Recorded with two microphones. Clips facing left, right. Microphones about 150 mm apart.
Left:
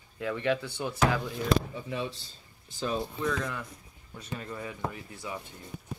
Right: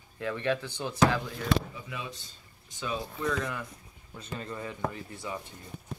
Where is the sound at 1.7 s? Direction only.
30° left (ahead or behind).